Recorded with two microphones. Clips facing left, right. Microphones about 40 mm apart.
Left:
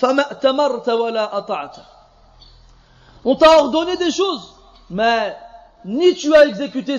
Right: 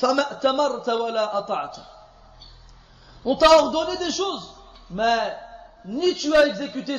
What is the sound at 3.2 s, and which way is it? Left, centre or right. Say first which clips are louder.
A man's voice: left 5 dB; left.